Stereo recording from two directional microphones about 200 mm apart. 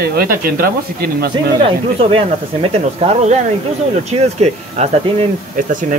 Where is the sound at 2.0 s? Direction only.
30° right (ahead or behind).